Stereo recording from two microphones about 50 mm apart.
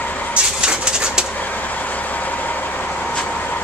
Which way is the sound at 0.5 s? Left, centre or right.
Centre.